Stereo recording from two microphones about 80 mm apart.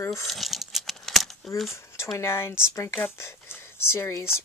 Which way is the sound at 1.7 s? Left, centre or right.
Left.